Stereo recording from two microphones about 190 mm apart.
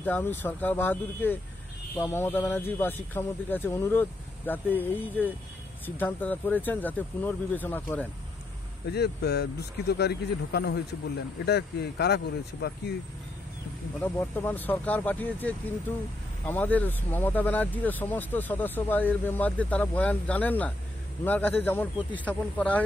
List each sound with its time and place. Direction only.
0.0 s speech: 10° left (ahead or behind)
8.8 s speech: 60° left (ahead or behind)
14.0 s speech: 10° left (ahead or behind)